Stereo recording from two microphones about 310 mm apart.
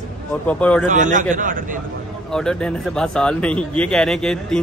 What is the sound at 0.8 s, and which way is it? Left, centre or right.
Speech, right.